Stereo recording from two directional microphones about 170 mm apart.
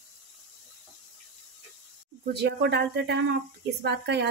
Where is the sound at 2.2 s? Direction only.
75° right (ahead or behind).